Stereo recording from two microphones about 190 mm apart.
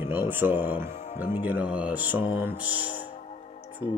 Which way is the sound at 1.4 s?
10° right (ahead or behind).